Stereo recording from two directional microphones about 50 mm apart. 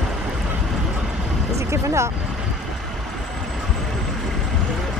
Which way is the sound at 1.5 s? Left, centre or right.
Right.